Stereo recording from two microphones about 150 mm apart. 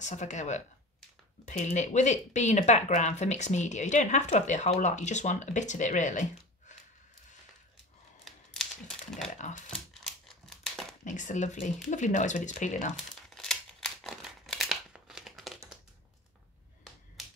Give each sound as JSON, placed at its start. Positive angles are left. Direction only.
{"t": 0.0, "sound": "speech", "side_deg": 50}
{"t": 8.3, "sound": "a sound", "side_deg": 5}
{"t": 9.3, "sound": "speech", "side_deg": 55}
{"t": 9.7, "sound": "crumpling", "side_deg": 5}
{"t": 11.1, "sound": "speech", "side_deg": 55}
{"t": 12.9, "sound": "crumpling", "side_deg": 5}